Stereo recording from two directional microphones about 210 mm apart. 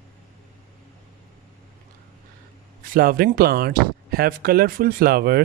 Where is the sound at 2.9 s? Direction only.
45° right (ahead or behind).